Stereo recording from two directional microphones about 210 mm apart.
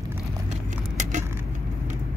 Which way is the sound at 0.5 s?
35° right (ahead or behind).